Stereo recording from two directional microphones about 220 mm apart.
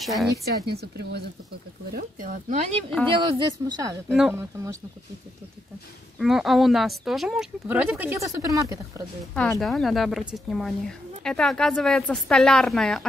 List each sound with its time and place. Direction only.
0.0 s a woman's voice: centre (ahead or behind)
0.7 s speech: 45° right (ahead or behind)
3.2 s a woman's voice: 20° right (ahead or behind)
4.1 s speech: 5° right (ahead or behind)
6.1 s a woman's voice: centre (ahead or behind)
9.3 s a woman's voice: 5° left (ahead or behind)